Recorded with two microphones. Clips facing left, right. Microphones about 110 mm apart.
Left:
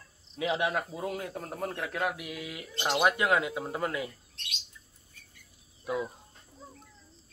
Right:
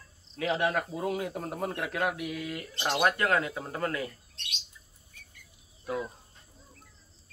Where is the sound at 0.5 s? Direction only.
10° left (ahead or behind).